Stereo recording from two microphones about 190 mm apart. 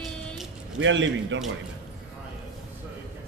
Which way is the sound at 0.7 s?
75° right (ahead or behind).